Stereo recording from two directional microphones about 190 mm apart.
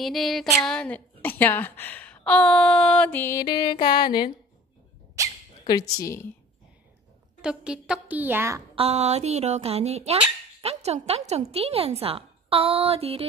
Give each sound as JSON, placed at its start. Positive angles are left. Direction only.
{"t": 0.0, "sound": "a sound", "side_deg": 0}
{"t": 1.2, "sound": "a woman's voice", "side_deg": 10}
{"t": 5.2, "sound": "dog", "side_deg": -15}
{"t": 5.7, "sound": "a woman's voice", "side_deg": 20}
{"t": 7.4, "sound": "a woman's voice", "side_deg": -5}
{"t": 8.7, "sound": "a woman's voice", "side_deg": -35}